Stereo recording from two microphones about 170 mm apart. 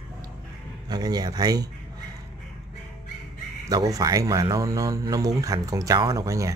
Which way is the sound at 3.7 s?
20° right (ahead or behind).